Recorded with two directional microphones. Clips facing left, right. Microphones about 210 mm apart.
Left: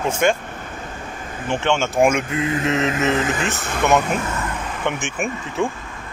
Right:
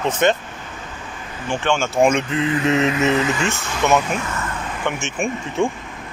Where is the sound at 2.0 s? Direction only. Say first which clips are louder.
Right 2 dB; 10° left (ahead or behind).